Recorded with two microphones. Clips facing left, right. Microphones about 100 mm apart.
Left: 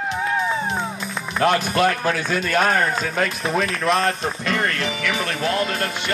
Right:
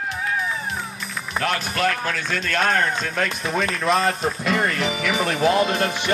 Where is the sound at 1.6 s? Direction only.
10° left (ahead or behind).